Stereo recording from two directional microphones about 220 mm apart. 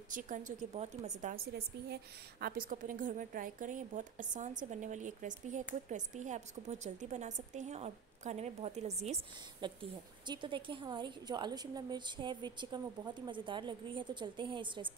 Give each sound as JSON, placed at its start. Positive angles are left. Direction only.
{"t": 0.1, "sound": "a woman's voice", "side_deg": -35}
{"t": 2.4, "sound": "a woman's voice", "side_deg": -40}